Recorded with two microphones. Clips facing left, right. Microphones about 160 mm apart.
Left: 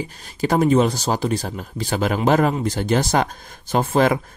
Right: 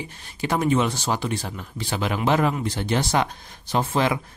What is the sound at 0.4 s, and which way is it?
Speech, 40° left (ahead or behind).